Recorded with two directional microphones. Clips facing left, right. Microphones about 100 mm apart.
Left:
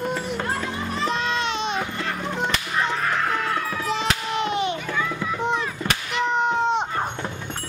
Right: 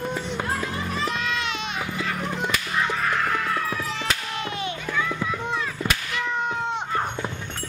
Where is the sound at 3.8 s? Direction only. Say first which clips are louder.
Left 4 dB; 20° left (ahead or behind).